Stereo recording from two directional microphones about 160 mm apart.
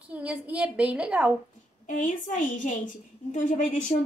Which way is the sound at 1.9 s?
50° left (ahead or behind).